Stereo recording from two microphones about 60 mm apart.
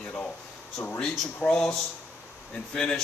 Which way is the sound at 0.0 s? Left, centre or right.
Centre.